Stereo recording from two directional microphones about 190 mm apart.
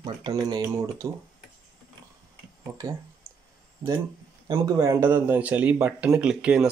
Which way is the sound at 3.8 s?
20° right (ahead or behind).